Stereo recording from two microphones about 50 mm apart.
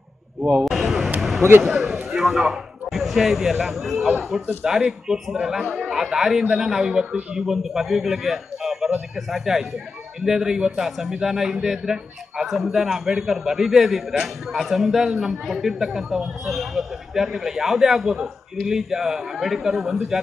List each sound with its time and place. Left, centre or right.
0.4 s speech: centre
0.7 s a sound: centre
1.6 s a man's voice: centre